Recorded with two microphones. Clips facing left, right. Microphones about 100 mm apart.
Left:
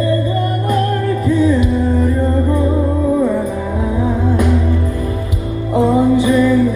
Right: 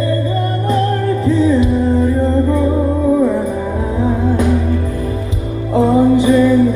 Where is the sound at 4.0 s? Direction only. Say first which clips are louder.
Right 2 dB; 20° right (ahead or behind).